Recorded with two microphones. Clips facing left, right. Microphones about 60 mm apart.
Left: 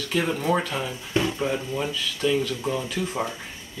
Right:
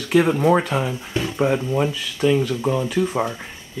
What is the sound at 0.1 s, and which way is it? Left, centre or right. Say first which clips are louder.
Speech: right 8 dB; right.